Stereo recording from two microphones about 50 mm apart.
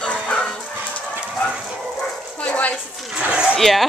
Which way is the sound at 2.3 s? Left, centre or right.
Left.